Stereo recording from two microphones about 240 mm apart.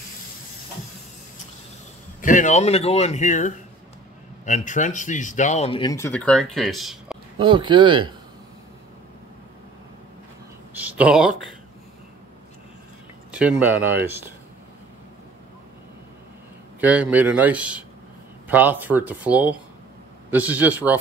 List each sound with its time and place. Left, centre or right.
2.2 s speech: left; by 7.2 s centre
7.3 s speech: centre
10.7 s a sound: centre
13.3 s speech: centre
16.8 s a man's voice: centre